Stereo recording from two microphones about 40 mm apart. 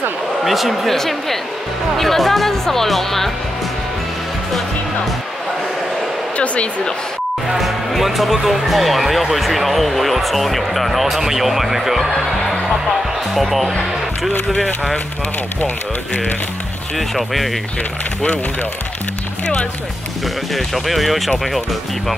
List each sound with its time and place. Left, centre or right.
0.4 s speech: centre
0.9 s speech: centre
6.3 s a sound: left
7.5 s speech: centre
17.1 s speech: centre
20.5 s speech: centre